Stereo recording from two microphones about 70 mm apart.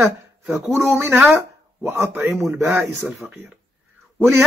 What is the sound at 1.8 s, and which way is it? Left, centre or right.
Speech, right.